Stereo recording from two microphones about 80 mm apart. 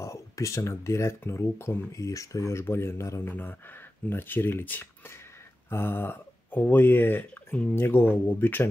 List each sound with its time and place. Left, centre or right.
0.0 s speech: left; by 7.8 s centre
7.8 s speech: left